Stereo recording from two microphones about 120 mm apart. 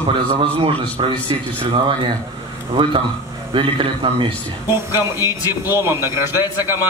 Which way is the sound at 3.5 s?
45° right (ahead or behind).